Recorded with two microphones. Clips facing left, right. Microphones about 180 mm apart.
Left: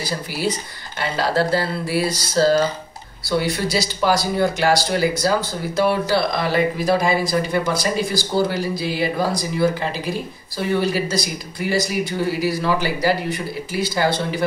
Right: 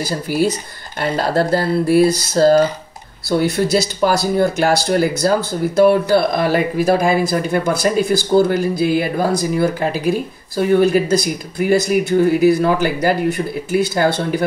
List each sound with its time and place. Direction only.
0.3 s speech: 45° right (ahead or behind)